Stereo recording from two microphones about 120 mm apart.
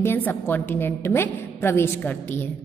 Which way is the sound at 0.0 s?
20° left (ahead or behind).